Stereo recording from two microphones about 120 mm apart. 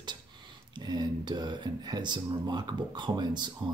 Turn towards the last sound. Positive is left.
turn(degrees=-40)  # may be behind; listen again after turning